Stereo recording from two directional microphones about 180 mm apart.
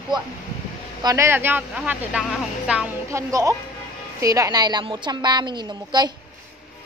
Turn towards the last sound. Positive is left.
turn(degrees=-25)  # may be behind; listen again after turning